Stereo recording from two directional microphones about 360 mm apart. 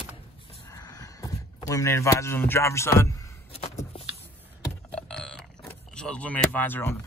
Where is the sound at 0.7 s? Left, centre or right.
Centre.